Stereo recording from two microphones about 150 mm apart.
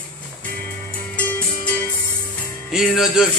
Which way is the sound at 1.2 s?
10° left (ahead or behind).